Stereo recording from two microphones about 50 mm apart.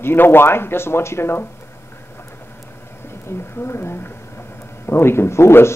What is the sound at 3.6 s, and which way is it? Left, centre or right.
Speech, left.